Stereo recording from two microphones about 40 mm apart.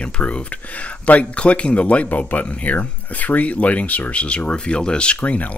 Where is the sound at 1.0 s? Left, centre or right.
Left.